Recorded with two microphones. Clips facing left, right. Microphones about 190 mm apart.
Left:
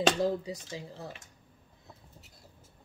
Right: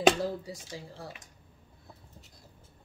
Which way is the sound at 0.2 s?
20° left (ahead or behind).